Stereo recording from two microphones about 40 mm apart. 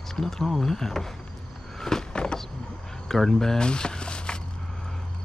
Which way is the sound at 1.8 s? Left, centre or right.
Centre.